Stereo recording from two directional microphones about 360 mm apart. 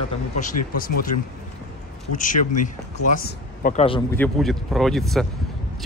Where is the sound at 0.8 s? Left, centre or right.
Left.